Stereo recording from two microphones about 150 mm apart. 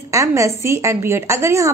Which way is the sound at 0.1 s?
20° right (ahead or behind).